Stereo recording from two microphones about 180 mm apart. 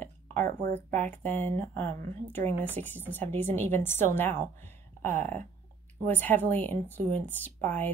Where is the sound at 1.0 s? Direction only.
10° left (ahead or behind).